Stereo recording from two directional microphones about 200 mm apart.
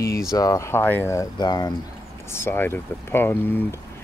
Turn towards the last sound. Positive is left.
turn(degrees=10)  # may be behind; listen again after turning